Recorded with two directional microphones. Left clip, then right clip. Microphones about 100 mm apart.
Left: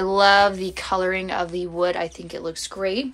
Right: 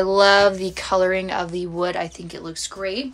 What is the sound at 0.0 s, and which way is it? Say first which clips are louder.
Speech: right 1 dB; 25° right (ahead or behind).